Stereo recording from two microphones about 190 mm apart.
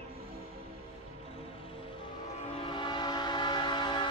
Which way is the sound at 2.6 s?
25° left (ahead or behind).